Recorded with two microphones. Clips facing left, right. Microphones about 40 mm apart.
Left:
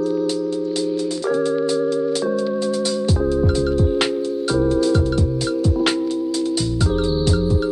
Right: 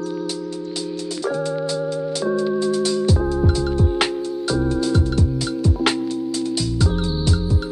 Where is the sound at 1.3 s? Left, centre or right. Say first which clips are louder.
Left 4 dB; left.